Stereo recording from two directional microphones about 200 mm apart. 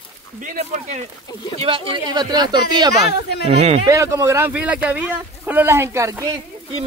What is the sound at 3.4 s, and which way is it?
Speech, 30° right (ahead or behind).